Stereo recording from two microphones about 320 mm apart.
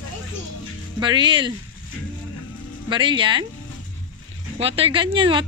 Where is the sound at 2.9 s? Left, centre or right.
Centre.